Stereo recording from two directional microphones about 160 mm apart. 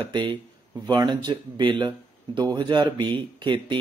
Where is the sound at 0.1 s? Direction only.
30° right (ahead or behind).